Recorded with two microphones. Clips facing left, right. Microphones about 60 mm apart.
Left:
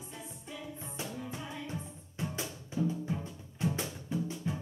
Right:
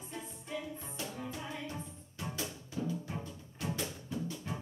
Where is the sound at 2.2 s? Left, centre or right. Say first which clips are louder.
Left 2 dB; centre.